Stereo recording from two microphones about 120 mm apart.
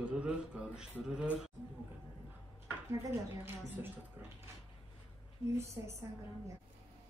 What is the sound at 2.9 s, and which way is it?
Speech, 25° right (ahead or behind).